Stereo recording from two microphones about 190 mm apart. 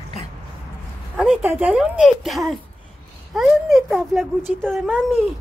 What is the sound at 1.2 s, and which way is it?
Speech, 5° right (ahead or behind).